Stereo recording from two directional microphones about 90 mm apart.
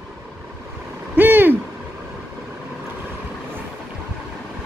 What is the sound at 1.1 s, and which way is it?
Hoot, 25° right (ahead or behind).